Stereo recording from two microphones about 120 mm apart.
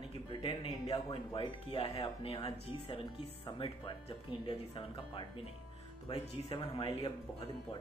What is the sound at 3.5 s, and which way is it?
Speech, 45° left (ahead or behind).